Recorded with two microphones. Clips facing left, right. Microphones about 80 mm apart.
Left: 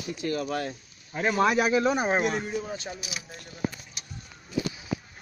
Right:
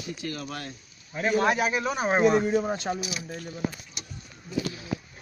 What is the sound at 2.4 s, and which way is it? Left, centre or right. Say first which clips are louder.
Speech: right 7 dB; right.